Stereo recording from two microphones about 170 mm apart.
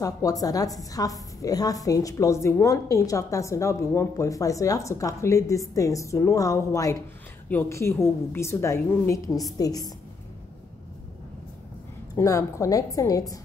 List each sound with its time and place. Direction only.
0.0 s a woman's voice: 20° left (ahead or behind)
12.2 s a woman's voice: 20° left (ahead or behind)